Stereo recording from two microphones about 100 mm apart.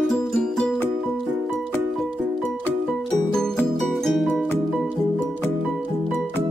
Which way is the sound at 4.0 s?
5° left (ahead or behind).